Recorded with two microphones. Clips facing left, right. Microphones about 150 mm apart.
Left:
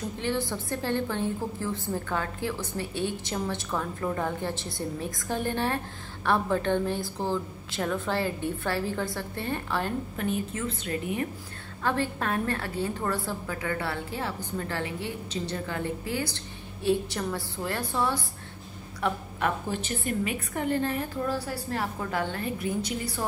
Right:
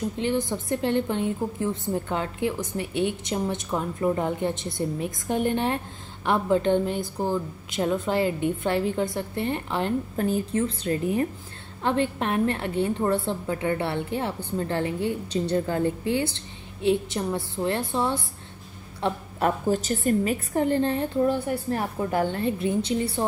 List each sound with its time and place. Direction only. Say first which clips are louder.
0.2 s a woman's voice: right 3 dB; 20° right (ahead or behind)
10.1 s a woman's voice: right 6 dB; 35° right (ahead or behind)
11.8 s a woman's voice: right 4 dB; 20° right (ahead or behind)
19.7 s a woman's voice: right 7 dB; 40° right (ahead or behind)